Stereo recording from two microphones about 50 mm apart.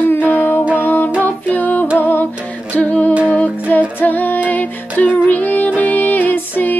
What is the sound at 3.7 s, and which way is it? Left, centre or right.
Music, left.